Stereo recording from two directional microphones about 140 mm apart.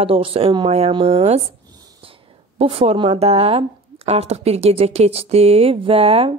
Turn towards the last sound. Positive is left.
turn(degrees=-45)  # may be behind; listen again after turning